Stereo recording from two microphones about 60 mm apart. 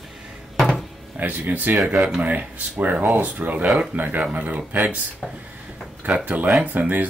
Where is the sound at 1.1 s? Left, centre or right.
Right.